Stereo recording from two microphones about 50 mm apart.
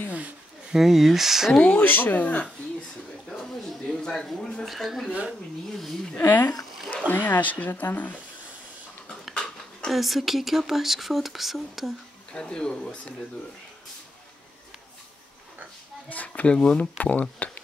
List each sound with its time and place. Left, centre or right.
0.7 s speech: centre
1.6 s speech: left
1.9 s speech: left
3.3 s a sound: centre
3.9 s speech: centre
4.6 s speech: centre
6.2 s speech: left
9.3 s a sound: centre
9.8 s speech: centre
12.3 s speech: centre
16.1 s speech: left
16.5 s speech: left
16.9 s speech: left